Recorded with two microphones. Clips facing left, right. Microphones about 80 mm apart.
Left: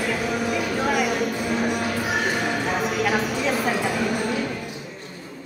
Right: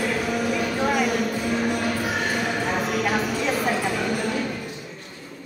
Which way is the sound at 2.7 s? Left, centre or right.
Centre.